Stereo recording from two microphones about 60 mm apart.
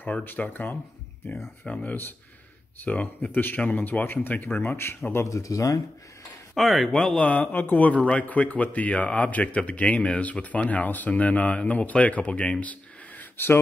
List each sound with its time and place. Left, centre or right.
0.0 s speech: left
1.6 s speech: left
4.6 s speech: left
5.2 s speech: left
6.5 s speech: centre
7.2 s speech: left